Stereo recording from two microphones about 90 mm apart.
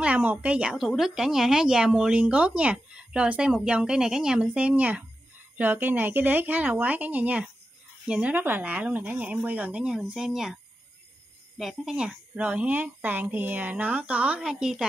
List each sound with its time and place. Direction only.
0.0 s speech: 15° right (ahead or behind)
0.7 s a woman's voice: centre (ahead or behind)
11.5 s cricket: centre (ahead or behind)
11.9 s a woman's voice: 10° right (ahead or behind)